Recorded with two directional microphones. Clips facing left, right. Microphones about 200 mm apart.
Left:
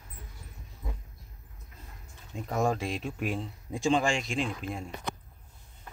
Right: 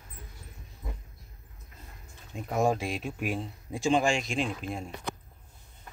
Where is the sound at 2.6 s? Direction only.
10° right (ahead or behind).